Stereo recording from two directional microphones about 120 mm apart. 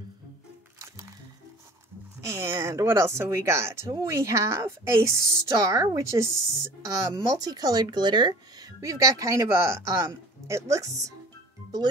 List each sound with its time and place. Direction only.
0.7 s music: 25° right (ahead or behind)
2.2 s speech: 25° right (ahead or behind)